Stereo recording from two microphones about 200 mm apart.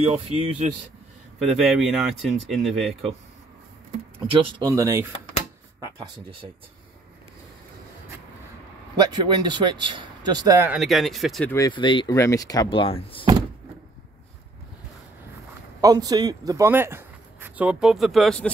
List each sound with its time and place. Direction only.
0.0 s speech: 30° right (ahead or behind)
1.5 s speech: centre (ahead or behind)
4.3 s speech: 20° right (ahead or behind)
8.9 s speech: 20° right (ahead or behind)
10.7 s speech: centre (ahead or behind)
11.5 s speech: 20° left (ahead or behind)
15.8 s speech: 20° right (ahead or behind); by 18.5 s centre (ahead or behind)